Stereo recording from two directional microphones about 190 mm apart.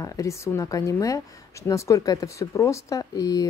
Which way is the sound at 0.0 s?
15° left (ahead or behind).